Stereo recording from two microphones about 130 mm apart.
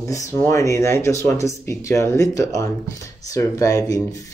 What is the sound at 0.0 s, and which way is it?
Speech, 25° left (ahead or behind).